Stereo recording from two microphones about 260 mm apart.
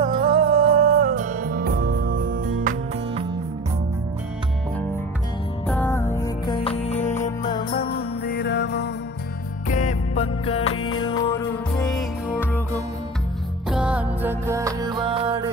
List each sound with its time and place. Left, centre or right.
0.0 s music: right
0.8 s music: right
5.7 s music: centre; by 8.9 s left
9.7 s music: left; by 12.6 s centre
13.7 s music: centre